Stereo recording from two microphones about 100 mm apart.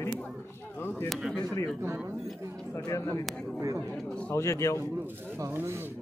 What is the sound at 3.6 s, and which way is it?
Speech, 30° right (ahead or behind).